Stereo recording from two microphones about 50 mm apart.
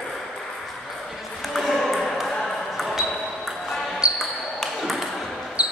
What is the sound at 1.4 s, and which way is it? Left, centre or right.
Ping, centre.